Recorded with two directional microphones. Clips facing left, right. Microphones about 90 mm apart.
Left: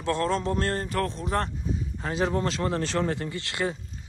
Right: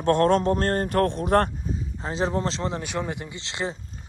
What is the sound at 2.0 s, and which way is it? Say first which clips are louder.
Speech: right 1 dB; 25° right (ahead or behind).